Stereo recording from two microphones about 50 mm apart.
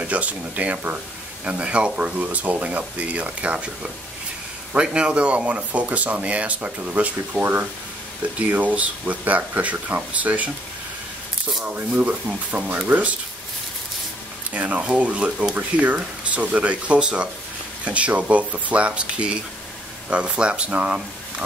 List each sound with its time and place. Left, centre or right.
0.0 s speech: right
2.1 s speech: right
11.9 s speech: right
14.5 s speech: right